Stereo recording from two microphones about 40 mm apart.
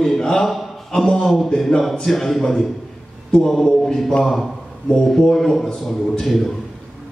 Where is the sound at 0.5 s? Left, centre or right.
Centre.